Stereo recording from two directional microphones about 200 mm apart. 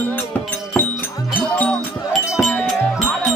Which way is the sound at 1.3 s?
10° left (ahead or behind).